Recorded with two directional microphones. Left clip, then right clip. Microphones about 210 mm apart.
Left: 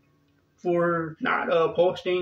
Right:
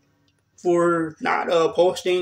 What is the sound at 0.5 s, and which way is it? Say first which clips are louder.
Speech: right 5 dB; 10° left (ahead or behind).